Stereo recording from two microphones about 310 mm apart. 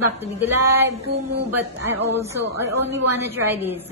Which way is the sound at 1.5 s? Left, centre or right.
Centre.